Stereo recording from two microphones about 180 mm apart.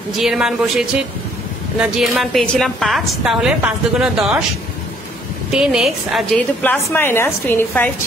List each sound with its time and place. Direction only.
0.2 s a woman's voice: centre (ahead or behind)
5.5 s a woman's voice: 5° right (ahead or behind)
6.6 s a woman's voice: 10° left (ahead or behind)